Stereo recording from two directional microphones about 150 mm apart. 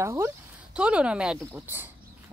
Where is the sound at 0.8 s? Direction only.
5° right (ahead or behind).